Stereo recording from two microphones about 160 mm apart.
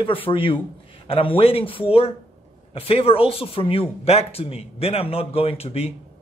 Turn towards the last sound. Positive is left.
turn(degrees=40)  # may be behind; listen again after turning